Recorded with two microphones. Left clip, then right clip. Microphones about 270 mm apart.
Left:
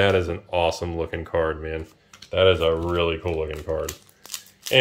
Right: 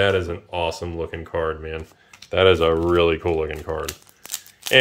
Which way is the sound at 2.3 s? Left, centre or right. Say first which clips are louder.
Right 2 dB; centre.